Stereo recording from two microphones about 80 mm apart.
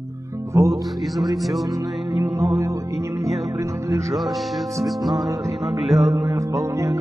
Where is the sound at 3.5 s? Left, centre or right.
Right.